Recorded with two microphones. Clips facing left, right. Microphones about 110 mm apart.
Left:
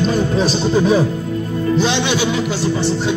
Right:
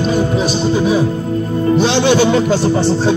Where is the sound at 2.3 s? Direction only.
45° right (ahead or behind).